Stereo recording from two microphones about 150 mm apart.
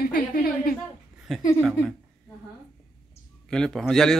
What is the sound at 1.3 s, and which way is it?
Speech, centre (ahead or behind).